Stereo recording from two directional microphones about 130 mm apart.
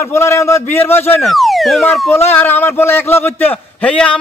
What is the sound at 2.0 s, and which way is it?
A man's voice, 20° left (ahead or behind).